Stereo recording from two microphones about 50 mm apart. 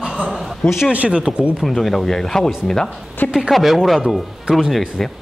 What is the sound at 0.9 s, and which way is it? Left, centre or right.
Speech, right.